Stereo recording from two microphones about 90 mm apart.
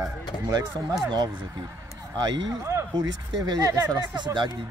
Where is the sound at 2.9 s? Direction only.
45° right (ahead or behind); by 4.5 s 60° right (ahead or behind).